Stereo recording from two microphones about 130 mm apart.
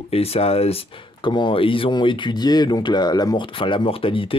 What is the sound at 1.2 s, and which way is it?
Speech, 35° left (ahead or behind).